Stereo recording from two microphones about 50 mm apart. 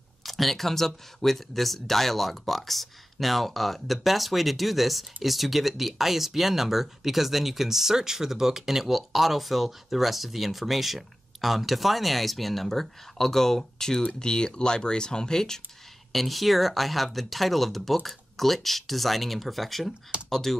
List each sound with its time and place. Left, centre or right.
0.2 s speech: centre